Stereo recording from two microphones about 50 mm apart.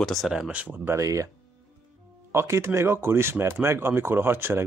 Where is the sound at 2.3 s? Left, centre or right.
Right.